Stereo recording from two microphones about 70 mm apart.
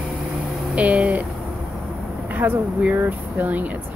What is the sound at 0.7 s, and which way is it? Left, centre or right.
Speech, centre.